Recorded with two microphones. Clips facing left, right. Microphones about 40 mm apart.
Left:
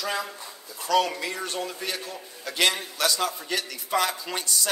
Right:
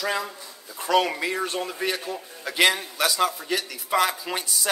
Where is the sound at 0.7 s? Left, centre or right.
Right.